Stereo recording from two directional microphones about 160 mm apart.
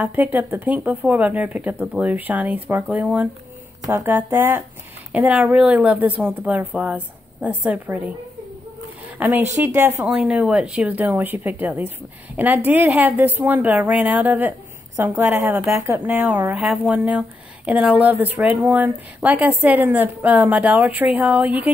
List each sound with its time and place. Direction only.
0.0 s speech: 10° right (ahead or behind)
9.2 s speech: 15° right (ahead or behind)
10.0 s speech: 5° right (ahead or behind)